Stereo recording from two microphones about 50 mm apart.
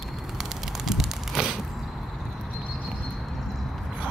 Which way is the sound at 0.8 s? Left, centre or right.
Centre.